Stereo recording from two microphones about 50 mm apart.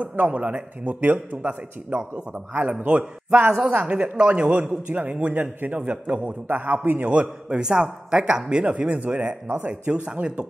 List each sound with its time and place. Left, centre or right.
0.0 s a man's voice: right
2.8 s a man's voice: right
5.3 s a man's voice: right
5.8 s a man's voice: right
6.4 s a man's voice: right
7.1 s a man's voice: right